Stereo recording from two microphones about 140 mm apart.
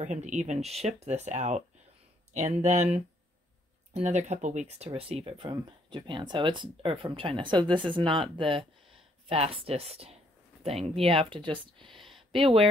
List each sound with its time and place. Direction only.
0.0 s speech: 55° right (ahead or behind); by 12.0 s 35° right (ahead or behind)
12.0 s a sound: centre (ahead or behind)
12.3 s speech: 40° right (ahead or behind)